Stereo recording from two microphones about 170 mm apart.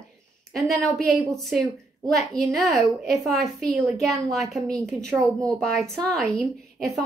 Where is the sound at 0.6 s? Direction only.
Centre (ahead or behind).